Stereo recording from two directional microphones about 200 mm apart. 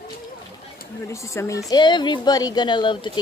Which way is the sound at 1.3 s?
15° left (ahead or behind).